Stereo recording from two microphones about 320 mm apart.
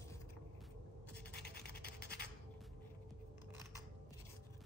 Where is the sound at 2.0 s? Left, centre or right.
Left.